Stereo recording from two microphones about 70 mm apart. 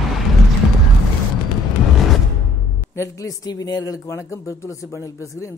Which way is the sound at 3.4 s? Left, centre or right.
Left.